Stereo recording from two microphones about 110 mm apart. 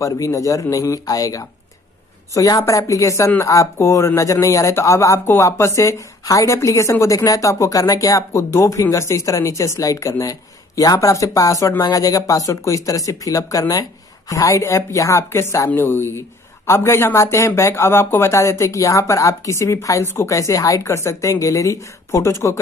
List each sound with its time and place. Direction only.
0.0 s speech: 30° left (ahead or behind)